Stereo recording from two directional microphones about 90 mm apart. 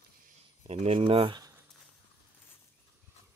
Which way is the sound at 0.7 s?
90° right.